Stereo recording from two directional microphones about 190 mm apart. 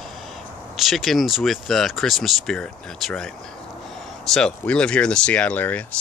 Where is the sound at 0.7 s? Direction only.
Centre (ahead or behind).